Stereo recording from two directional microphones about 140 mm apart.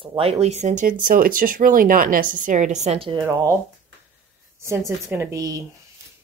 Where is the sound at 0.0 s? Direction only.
40° right (ahead or behind).